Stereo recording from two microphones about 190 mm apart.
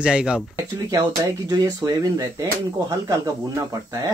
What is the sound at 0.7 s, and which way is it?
Speech, 20° right (ahead or behind).